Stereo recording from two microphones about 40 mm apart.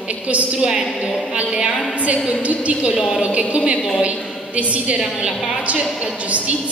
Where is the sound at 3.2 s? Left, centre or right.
Right.